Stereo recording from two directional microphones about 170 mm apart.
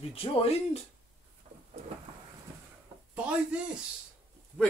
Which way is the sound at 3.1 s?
5° right (ahead or behind).